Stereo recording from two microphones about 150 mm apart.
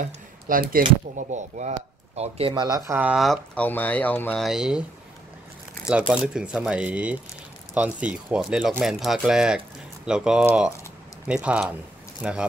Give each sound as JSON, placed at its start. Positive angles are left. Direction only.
{"t": 0.0, "sound": "speech", "side_deg": -70}
{"t": 2.1, "sound": "speech", "side_deg": -45}
{"t": 2.9, "sound": "speech", "side_deg": -10}
{"t": 3.5, "sound": "speech", "side_deg": 10}
{"t": 4.4, "sound": "speech", "side_deg": 0}
{"t": 5.9, "sound": "speech", "side_deg": -5}